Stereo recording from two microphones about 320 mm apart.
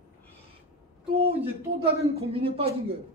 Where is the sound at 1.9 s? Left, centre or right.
Centre.